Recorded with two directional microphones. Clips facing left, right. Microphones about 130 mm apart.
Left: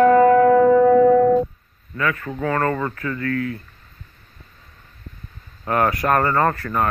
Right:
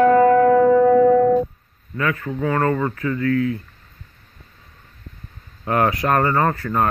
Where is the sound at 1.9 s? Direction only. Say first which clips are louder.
Right 1 dB; 25° right (ahead or behind).